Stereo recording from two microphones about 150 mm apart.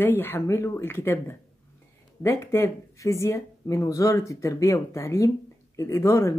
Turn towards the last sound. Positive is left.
turn(degrees=20)  # may be behind; listen again after turning